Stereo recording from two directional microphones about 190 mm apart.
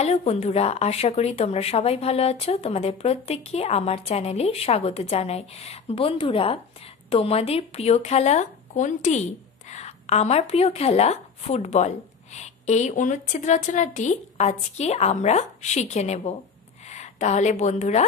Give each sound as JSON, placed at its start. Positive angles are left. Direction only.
{"t": 0.0, "sound": "a woman's voice", "side_deg": 35}